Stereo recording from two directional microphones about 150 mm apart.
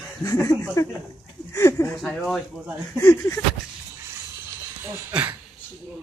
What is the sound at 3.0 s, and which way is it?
Speech, 20° left (ahead or behind).